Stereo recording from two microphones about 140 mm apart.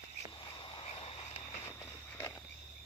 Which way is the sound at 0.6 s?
35° left (ahead or behind).